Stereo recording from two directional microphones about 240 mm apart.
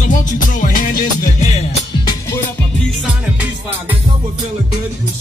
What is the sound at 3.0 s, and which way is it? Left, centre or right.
Music, centre.